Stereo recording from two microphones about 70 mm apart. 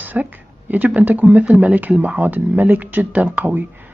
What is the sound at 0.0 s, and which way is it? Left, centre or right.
Speech, right.